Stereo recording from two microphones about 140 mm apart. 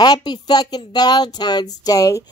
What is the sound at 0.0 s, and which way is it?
Speech, 30° left (ahead or behind).